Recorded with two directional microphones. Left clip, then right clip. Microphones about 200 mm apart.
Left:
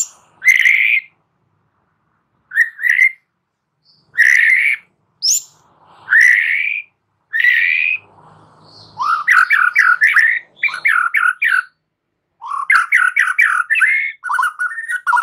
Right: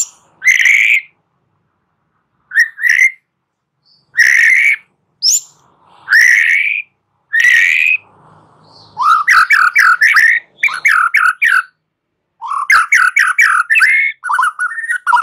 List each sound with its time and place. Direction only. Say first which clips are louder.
0.0 s whistle: right 1 dB; 15° right (ahead or behind)
2.4 s whistling: right 3 dB; 15° right (ahead or behind)
4.1 s bird: right 2 dB; 15° right (ahead or behind)
6.1 s whistling: right 3 dB; 15° right (ahead or behind)
8.9 s bird: right 4 dB; 15° right (ahead or behind)
12.4 s bird: right 3 dB; 15° right (ahead or behind)